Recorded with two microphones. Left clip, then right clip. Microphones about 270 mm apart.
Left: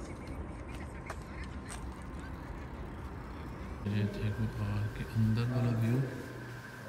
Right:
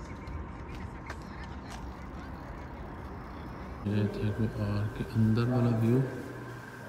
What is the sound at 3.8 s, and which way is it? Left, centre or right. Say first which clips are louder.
A man's voice: right 5 dB; centre.